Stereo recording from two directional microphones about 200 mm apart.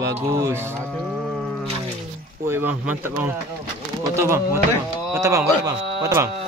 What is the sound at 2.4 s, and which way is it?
Speech, 10° right (ahead or behind).